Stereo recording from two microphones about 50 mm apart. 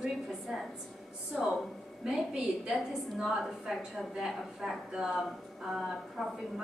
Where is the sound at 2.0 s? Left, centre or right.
Centre.